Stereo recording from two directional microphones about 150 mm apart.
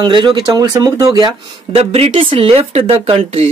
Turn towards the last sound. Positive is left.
turn(degrees=-40)  # may be behind; listen again after turning